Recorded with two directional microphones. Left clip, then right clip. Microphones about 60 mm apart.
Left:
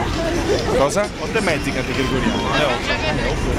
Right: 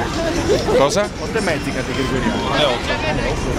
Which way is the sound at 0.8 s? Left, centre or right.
Centre.